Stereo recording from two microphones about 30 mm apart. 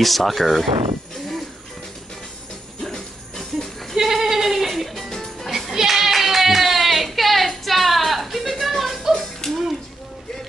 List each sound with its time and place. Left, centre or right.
0.0 s speech: centre
2.8 s jingle bell: centre
3.9 s goat: centre
4.9 s music: centre
5.7 s clapping: centre
9.4 s music: centre